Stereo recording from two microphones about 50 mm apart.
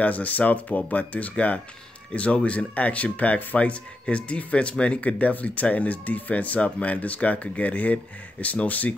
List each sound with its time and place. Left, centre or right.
0.0 s speech: left